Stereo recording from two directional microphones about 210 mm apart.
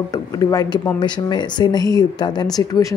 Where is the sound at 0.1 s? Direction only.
15° left (ahead or behind).